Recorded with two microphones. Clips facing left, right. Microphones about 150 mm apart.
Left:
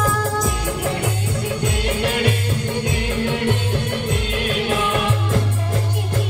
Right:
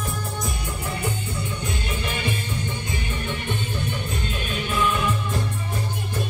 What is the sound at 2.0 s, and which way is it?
Music, 85° left.